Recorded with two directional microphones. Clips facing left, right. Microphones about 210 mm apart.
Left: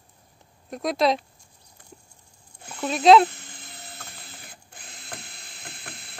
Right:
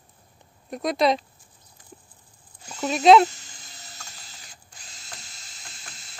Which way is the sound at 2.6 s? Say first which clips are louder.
Right 1 dB; 55° left (ahead or behind).